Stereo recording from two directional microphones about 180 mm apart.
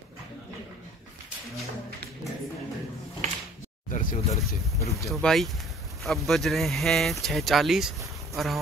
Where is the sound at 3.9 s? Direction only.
45° left (ahead or behind).